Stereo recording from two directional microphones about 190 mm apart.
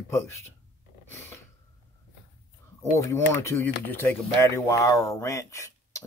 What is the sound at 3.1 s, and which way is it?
Speech, 15° left (ahead or behind).